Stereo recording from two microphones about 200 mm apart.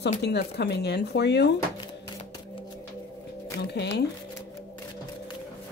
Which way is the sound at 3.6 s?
55° left (ahead or behind).